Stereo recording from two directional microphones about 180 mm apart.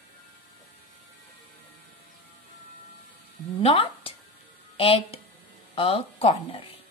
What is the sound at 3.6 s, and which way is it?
A woman's voice, 30° left (ahead or behind).